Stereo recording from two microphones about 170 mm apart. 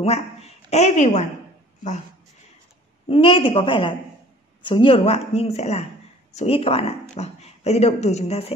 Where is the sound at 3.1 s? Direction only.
30° left (ahead or behind).